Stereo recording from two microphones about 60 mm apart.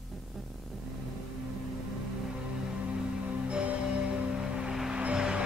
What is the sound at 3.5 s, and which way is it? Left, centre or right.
Music, centre.